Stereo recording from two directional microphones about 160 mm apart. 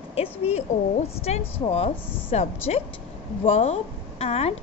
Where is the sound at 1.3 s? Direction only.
45° left (ahead or behind).